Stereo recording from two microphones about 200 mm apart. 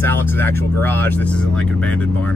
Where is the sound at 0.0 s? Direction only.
10° left (ahead or behind).